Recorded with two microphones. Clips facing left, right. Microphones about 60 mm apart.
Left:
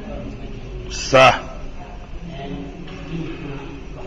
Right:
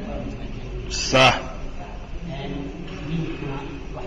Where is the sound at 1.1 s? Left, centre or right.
Left.